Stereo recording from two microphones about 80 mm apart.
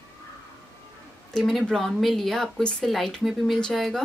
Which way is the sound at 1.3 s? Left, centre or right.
Centre.